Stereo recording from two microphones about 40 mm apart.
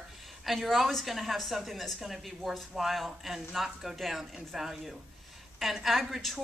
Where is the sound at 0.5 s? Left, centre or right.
Centre.